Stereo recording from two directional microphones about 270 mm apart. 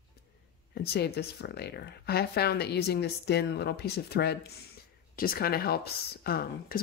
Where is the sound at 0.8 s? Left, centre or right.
Left.